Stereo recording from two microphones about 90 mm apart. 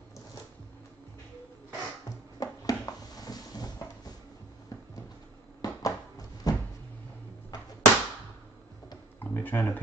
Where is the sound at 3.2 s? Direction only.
45° left (ahead or behind).